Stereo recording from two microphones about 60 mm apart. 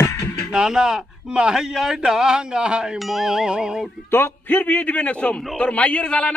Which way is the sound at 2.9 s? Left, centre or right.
Centre.